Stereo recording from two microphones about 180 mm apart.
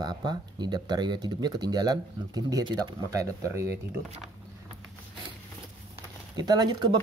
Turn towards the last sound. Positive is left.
turn(degrees=-25)  # may be behind; listen again after turning